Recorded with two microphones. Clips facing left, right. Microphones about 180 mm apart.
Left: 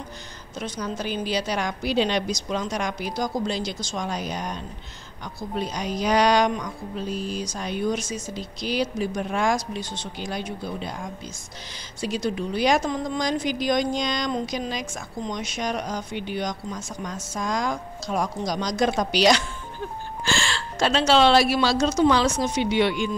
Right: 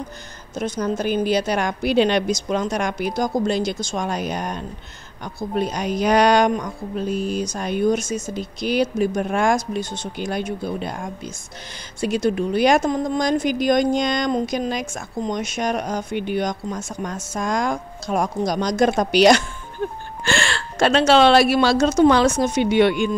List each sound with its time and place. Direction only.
0.6 s a woman's voice: 50° right (ahead or behind)